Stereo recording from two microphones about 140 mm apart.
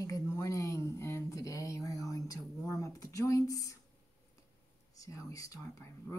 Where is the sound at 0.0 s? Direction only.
25° left (ahead or behind).